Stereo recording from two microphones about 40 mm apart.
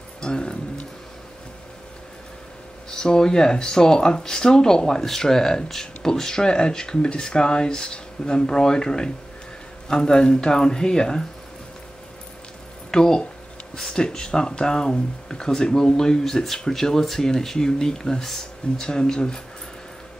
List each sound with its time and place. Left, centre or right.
0.2 s a sound: left
2.9 s speech: centre
12.9 s speech: centre